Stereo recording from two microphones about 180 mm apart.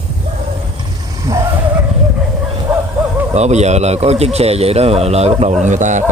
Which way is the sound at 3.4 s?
40° right (ahead or behind).